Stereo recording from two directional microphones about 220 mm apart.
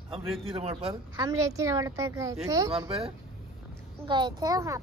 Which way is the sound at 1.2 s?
15° right (ahead or behind).